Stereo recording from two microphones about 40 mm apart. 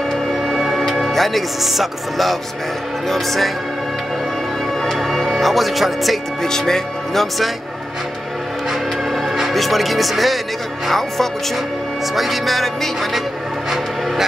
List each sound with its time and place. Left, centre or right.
0.1 s music: centre
1.6 s speech: centre
4.9 s speech: centre
6.4 s speech: centre
9.5 s speech: centre